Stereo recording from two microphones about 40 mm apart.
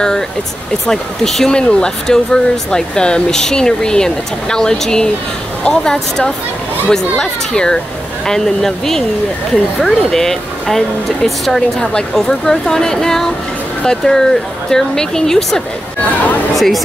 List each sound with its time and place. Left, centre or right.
0.8 s a woman's voice: centre
16.5 s speech: centre